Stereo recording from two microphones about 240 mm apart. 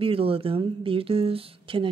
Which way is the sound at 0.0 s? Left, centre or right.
Right.